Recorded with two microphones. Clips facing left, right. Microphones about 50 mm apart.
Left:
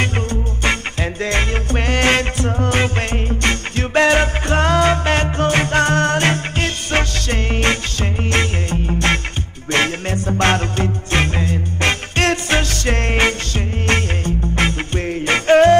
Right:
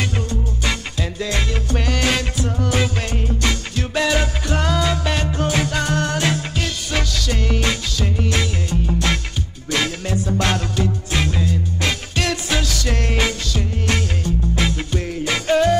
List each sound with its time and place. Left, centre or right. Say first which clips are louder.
0.0 s music: left 3 dB; left